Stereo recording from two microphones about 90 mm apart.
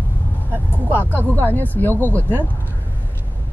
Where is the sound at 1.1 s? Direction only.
20° left (ahead or behind).